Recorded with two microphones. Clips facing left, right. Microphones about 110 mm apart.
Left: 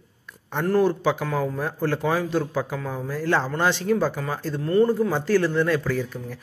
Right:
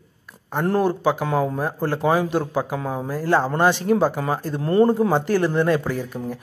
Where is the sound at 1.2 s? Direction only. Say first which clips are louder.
Right 4 dB; 30° right (ahead or behind).